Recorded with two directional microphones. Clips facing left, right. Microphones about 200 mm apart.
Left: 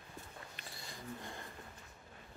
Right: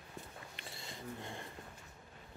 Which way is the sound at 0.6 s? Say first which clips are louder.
Right 4 dB; 25° right (ahead or behind).